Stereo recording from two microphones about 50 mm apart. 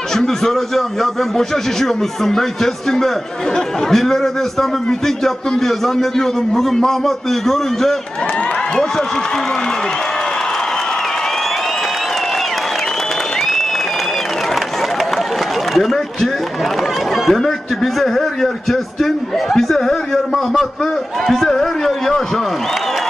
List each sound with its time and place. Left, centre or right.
0.1 s a man's voice: centre
15.7 s a sound: centre
17.1 s a man's voice: centre